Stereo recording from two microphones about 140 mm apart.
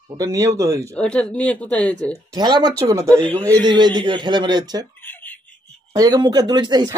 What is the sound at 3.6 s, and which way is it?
Speech, 30° right (ahead or behind).